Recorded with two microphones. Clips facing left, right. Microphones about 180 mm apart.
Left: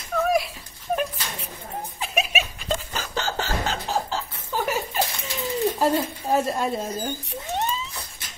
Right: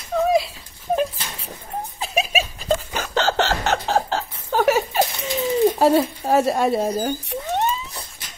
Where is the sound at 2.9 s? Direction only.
65° right (ahead or behind).